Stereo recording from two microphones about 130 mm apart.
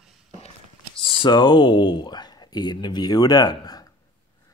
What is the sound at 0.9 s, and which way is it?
Speech, 40° left (ahead or behind).